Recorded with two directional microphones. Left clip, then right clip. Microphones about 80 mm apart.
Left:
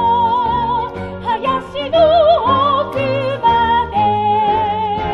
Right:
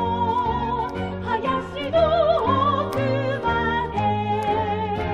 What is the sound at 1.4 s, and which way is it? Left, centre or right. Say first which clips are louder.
Music: left 6 dB; left.